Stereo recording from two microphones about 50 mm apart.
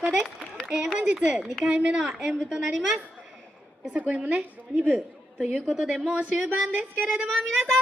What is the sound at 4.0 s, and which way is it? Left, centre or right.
A woman's voice, right.